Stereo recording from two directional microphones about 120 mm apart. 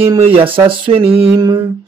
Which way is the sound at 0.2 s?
50° right (ahead or behind).